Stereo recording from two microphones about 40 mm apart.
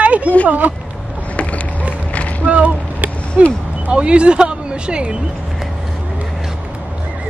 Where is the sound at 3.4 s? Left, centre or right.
Right.